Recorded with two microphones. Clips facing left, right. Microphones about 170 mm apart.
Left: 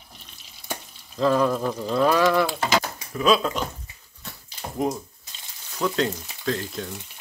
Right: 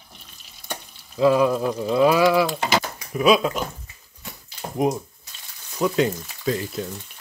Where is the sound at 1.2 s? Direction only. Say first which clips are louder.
Right 3 dB; 10° right (ahead or behind).